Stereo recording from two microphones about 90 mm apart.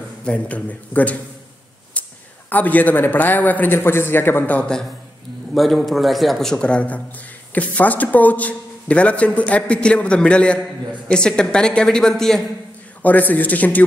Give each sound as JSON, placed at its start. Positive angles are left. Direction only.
{"t": 0.2, "sound": "a man's voice", "side_deg": 10}
{"t": 2.0, "sound": "a sound", "side_deg": 15}
{"t": 2.5, "sound": "a man's voice", "side_deg": 20}
{"t": 5.5, "sound": "a man's voice", "side_deg": 0}
{"t": 13.0, "sound": "a man's voice", "side_deg": 20}